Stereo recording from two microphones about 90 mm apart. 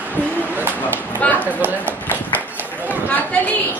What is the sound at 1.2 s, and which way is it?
Speech, 20° left (ahead or behind).